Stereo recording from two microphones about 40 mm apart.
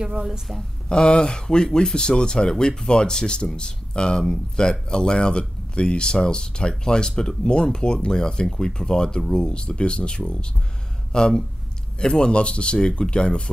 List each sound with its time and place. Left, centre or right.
0.0 s a woman's voice: centre
0.8 s speech: left